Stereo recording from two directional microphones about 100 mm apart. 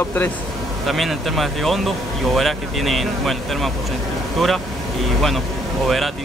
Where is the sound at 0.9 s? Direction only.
Centre (ahead or behind).